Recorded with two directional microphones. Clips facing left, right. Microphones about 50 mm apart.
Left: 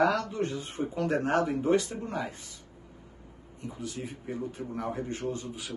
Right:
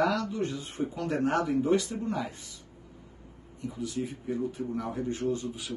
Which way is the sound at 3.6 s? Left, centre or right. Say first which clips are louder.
Right 4 dB; left.